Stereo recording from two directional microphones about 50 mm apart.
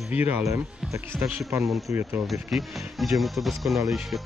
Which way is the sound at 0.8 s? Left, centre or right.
Centre.